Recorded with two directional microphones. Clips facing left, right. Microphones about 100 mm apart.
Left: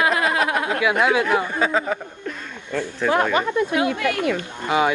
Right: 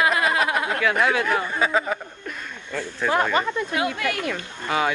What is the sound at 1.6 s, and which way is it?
Speech, 5° right (ahead or behind).